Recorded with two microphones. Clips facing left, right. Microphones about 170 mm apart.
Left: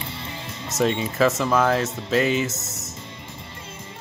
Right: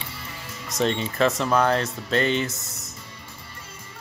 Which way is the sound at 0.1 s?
20° left (ahead or behind).